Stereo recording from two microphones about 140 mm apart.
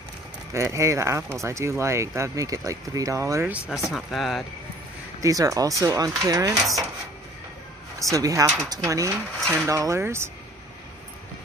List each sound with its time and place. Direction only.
0.5 s speech: 20° right (ahead or behind)
3.5 s speech: 10° right (ahead or behind)
5.2 s speech: 25° right (ahead or behind)
8.0 s speech: 25° right (ahead or behind)